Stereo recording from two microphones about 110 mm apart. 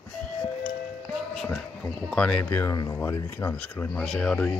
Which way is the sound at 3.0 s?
20° left (ahead or behind).